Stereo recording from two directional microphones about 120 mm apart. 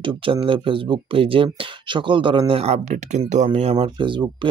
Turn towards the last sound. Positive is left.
turn(degrees=-45)  # may be behind; listen again after turning